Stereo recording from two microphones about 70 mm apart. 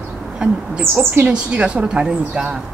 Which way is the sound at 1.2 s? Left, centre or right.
Centre.